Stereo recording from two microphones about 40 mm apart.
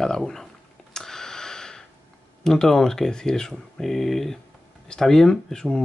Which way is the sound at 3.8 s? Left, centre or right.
Centre.